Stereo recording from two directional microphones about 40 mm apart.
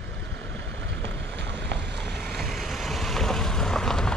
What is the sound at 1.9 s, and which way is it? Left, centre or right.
Vehicle, centre.